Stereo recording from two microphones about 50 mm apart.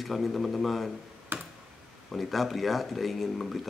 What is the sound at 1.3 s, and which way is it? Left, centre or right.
Tick, right.